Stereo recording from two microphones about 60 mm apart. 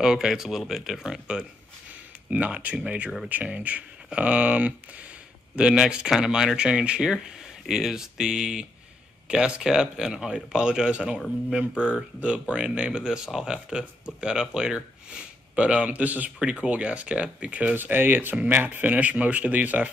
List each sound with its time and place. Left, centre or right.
0.0 s speech: centre; by 5.0 s right
5.6 s speech: centre
15.5 s speech: right
17.7 s speech: right